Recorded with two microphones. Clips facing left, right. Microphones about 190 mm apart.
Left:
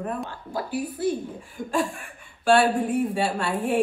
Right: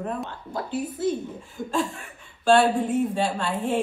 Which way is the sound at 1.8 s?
10° left (ahead or behind).